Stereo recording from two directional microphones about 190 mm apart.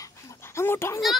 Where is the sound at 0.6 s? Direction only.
15° left (ahead or behind).